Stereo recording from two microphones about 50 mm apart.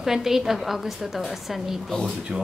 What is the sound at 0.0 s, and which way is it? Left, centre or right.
A woman's voice, centre.